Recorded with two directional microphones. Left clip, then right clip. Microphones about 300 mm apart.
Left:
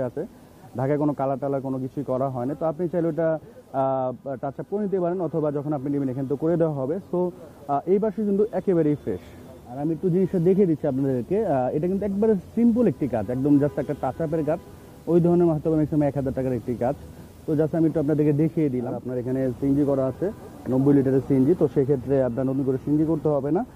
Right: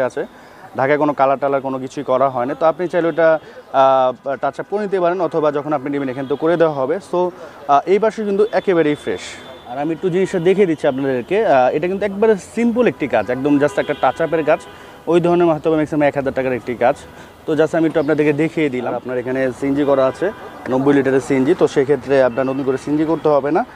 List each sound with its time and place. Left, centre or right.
0.7 s speech: centre